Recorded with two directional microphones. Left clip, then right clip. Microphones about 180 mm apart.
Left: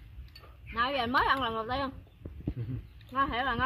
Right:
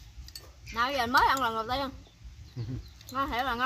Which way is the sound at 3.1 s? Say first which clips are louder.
Left 1 dB; 5° left (ahead or behind).